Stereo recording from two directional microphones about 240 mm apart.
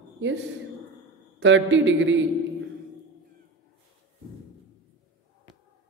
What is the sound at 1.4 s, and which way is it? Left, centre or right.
Speech, right.